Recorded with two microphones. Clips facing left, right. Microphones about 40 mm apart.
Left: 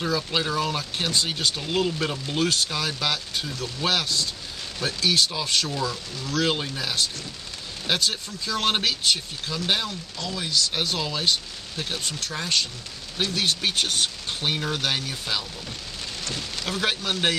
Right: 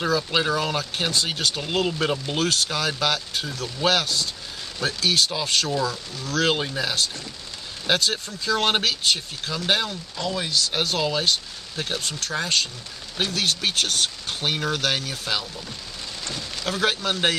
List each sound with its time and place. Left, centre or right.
0.3 s speech: centre
2.3 s speech: centre
5.7 s speech: centre
6.2 s speech: centre
6.5 s speech: centre
8.0 s speech: centre
10.5 s speech: centre
12.4 s speech: centre
16.6 s speech: centre